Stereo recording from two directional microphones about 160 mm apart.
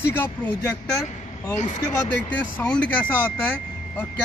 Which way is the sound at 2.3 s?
10° left (ahead or behind).